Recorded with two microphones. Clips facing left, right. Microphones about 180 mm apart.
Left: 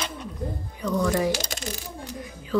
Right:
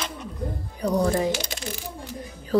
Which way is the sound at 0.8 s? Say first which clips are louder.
Right 2 dB; 35° right (ahead or behind).